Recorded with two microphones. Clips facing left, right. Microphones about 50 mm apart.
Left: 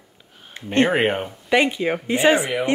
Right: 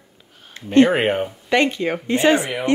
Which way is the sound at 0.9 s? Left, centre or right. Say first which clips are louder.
Right 1 dB; centre.